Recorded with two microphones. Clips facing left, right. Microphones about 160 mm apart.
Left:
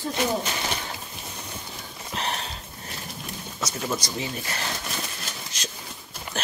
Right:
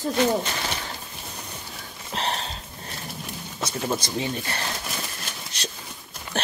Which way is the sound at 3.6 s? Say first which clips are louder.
Right 2 dB; 30° right (ahead or behind).